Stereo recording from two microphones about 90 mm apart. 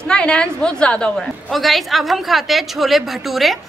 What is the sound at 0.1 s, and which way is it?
A woman's voice, 10° left (ahead or behind).